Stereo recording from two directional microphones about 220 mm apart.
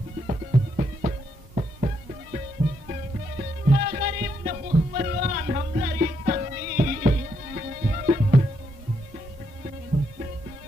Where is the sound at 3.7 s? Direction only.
40° right (ahead or behind).